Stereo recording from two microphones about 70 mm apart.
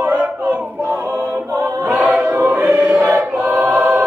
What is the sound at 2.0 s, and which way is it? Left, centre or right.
Choir, right.